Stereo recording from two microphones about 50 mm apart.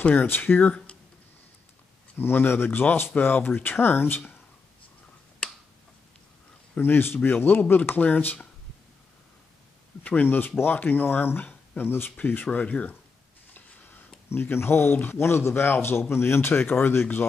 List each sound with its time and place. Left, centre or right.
0.1 s a man's voice: left
2.1 s a man's voice: left
6.8 s a man's voice: left
10.0 s a man's voice: left
12.5 s speech: left
13.5 s a sound: left
15.0 s a man's voice: left
17.0 s a man's voice: left